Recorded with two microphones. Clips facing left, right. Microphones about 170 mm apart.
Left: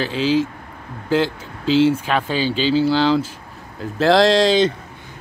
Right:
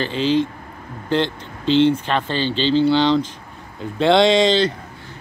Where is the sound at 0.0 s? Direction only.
5° left (ahead or behind).